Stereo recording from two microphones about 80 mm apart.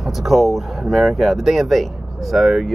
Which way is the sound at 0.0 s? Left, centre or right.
Centre.